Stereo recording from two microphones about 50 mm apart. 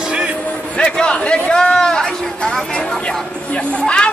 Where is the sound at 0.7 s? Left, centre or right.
Centre.